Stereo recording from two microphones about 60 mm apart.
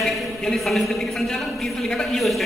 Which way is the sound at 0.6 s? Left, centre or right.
Centre.